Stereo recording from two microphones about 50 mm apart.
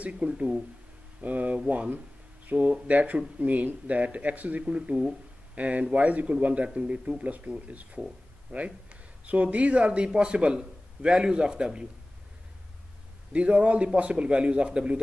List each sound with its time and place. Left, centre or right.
0.0 s speech: right
1.2 s speech: right
13.3 s speech: right